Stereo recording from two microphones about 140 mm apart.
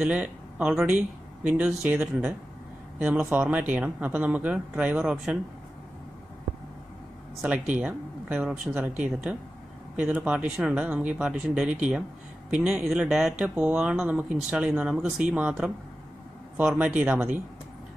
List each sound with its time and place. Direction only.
0.0 s speech: 5° right (ahead or behind)
7.7 s speech: 10° right (ahead or behind)